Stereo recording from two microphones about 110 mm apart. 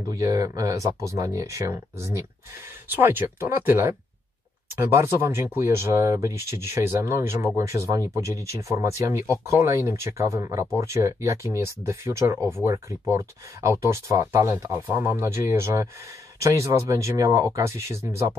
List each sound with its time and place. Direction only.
0.1 s speech: 30° right (ahead or behind)